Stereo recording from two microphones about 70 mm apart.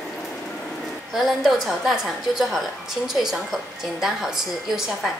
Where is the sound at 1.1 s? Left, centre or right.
Centre.